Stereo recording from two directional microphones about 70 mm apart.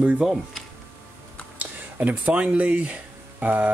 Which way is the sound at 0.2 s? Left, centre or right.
Centre.